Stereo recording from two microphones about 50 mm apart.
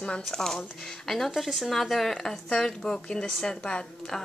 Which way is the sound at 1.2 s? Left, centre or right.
Centre.